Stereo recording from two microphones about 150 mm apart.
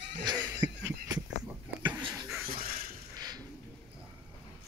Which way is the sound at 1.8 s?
30° right (ahead or behind).